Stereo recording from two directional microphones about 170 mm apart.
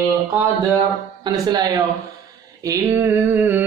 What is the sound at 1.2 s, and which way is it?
Speech, 25° right (ahead or behind).